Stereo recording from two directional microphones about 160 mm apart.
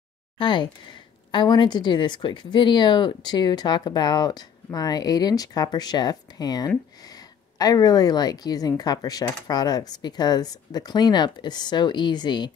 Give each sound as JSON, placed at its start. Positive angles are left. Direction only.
{"t": 0.4, "sound": "a woman's voice", "side_deg": 30}